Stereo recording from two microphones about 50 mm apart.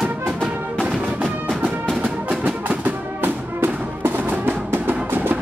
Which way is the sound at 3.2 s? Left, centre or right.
Right.